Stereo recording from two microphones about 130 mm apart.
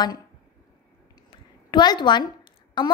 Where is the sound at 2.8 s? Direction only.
35° left (ahead or behind).